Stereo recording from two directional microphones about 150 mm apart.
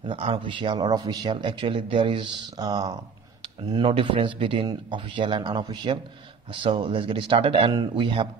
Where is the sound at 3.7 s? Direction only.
35° right (ahead or behind).